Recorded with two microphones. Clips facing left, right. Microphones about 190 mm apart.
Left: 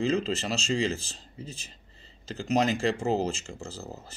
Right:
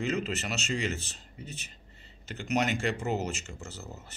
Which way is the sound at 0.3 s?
30° left (ahead or behind).